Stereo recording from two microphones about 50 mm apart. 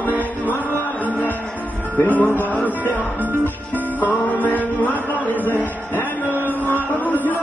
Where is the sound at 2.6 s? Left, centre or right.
Right.